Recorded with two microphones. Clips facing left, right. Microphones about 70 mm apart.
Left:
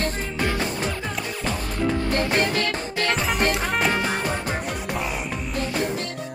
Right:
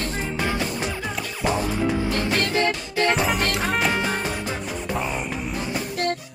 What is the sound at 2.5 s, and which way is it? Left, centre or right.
Music, right.